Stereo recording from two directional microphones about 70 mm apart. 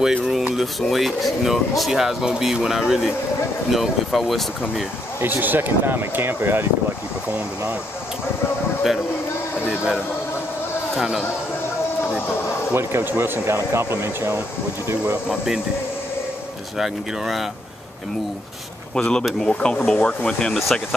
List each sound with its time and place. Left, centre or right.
0.0 s a sound: centre
0.7 s speech: centre
5.2 s speech: right
11.0 s speech: centre
12.7 s speech: right
15.2 s speech: centre
16.7 s speech: centre
18.9 s speech: centre
20.5 s speech: centre